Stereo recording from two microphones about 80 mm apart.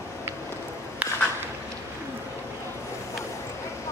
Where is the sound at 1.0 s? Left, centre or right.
Right.